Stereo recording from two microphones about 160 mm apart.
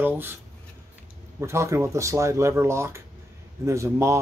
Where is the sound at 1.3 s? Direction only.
15° right (ahead or behind).